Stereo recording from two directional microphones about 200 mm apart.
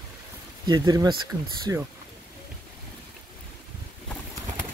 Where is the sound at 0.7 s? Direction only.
20° right (ahead or behind).